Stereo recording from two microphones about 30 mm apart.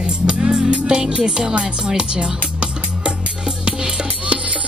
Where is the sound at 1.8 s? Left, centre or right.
Right.